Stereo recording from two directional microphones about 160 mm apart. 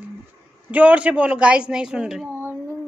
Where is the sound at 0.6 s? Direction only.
10° right (ahead or behind).